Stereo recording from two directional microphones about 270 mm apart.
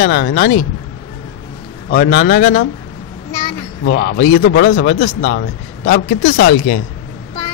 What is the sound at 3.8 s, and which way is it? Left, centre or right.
Speech, left.